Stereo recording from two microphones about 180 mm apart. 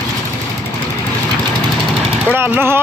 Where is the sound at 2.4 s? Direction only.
10° right (ahead or behind).